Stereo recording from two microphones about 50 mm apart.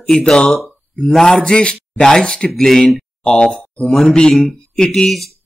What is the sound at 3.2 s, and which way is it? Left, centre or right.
Speech, centre.